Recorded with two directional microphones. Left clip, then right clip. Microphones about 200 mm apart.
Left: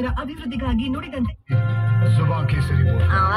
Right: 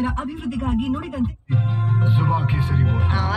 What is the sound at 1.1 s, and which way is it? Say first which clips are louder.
A woman's voice: even; 10° left (ahead or behind).